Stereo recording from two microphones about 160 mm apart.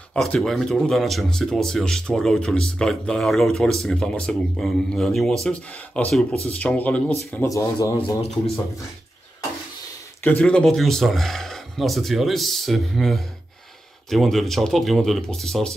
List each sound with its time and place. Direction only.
0.1 s speech: 5° left (ahead or behind); by 7.9 s 20° left (ahead or behind)
10.2 s speech: 10° left (ahead or behind)